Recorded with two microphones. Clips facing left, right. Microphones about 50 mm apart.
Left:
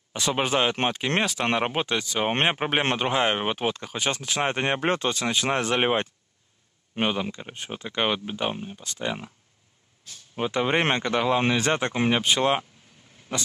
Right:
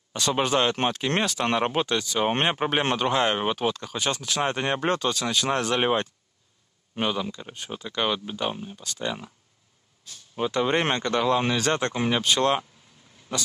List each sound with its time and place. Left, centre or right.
0.1 s speech: centre
10.3 s speech: centre